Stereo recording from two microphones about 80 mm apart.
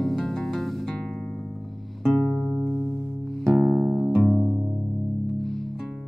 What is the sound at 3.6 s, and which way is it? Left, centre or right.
Music, right.